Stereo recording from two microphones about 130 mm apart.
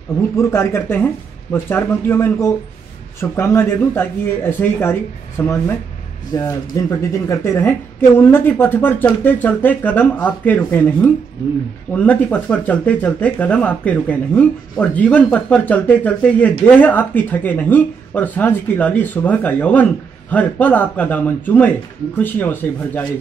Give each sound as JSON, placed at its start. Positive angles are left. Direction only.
{"t": 0.4, "sound": "speech", "side_deg": 20}